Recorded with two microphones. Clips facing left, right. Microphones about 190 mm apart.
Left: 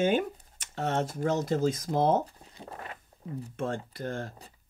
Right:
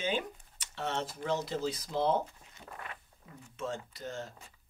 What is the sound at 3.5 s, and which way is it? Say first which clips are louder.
Speech: left 4 dB; 55° left (ahead or behind).